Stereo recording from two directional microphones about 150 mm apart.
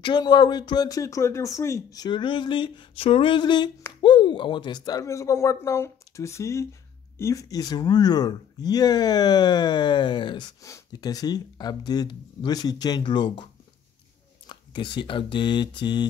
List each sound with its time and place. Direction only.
0.0 s speech: 30° left (ahead or behind)
14.5 s speech: 30° left (ahead or behind)